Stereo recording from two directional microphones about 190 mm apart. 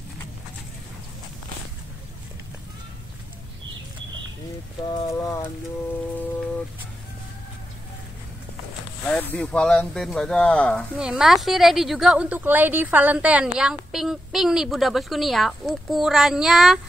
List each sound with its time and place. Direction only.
4.8 s speech: 20° left (ahead or behind)
9.1 s a woman's voice: 5° left (ahead or behind)